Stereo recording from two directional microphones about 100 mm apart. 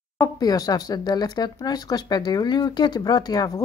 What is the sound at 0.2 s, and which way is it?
Speech, 40° left (ahead or behind).